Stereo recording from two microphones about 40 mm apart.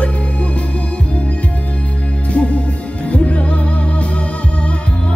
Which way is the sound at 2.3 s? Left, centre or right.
Left.